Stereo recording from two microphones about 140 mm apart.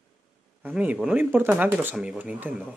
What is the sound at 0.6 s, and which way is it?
Speech, 10° right (ahead or behind).